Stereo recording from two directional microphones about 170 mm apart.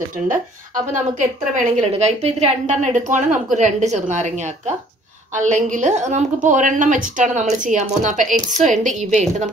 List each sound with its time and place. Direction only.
0.3 s a woman's voice: 50° right (ahead or behind)